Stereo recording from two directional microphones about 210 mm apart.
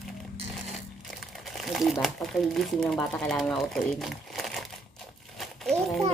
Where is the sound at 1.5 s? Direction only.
Centre (ahead or behind).